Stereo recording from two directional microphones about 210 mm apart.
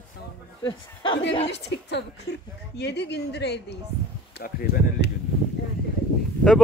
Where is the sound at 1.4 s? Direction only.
55° left (ahead or behind).